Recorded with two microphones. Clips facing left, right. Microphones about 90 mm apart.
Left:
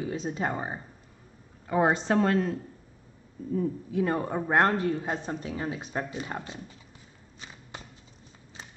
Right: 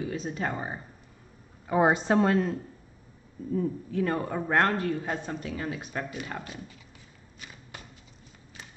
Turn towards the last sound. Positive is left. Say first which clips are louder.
# left 2 dB
turn(degrees=25)  # may be behind; listen again after turning